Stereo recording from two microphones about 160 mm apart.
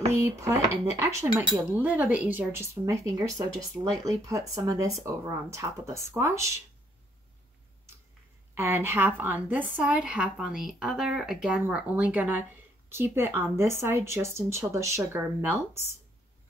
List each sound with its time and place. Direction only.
0.2 s a woman's voice: 20° right (ahead or behind)
8.5 s a woman's voice: 15° right (ahead or behind)